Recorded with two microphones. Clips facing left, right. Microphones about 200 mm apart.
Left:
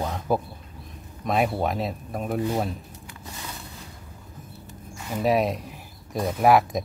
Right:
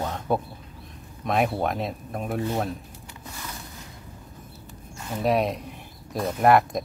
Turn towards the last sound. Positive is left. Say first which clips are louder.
# even
turn(degrees=0)  # may be behind; listen again after turning